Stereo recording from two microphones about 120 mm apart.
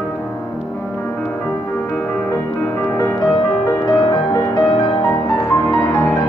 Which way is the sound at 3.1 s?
30° left (ahead or behind).